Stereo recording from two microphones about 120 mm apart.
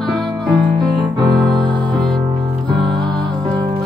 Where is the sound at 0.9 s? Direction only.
40° right (ahead or behind).